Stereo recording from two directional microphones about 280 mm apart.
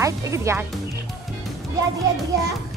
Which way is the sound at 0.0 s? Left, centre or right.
Centre.